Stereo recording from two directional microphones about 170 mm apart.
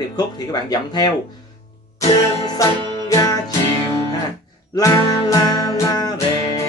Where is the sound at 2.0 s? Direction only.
40° left (ahead or behind).